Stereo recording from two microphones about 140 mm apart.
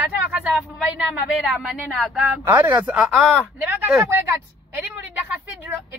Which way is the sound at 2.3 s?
15° right (ahead or behind).